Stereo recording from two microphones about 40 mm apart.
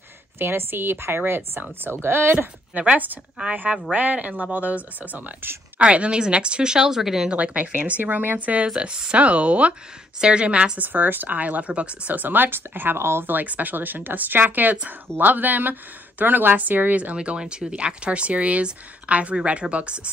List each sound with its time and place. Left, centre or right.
0.4 s speech: right
2.3 s speech: right; by 7.2 s centre
7.2 s speech: right
8.6 s speech: right
9.1 s speech: right
10.8 s speech: right
12.2 s speech: right
12.5 s speech: right
13.3 s speech: right
17.2 s speech: right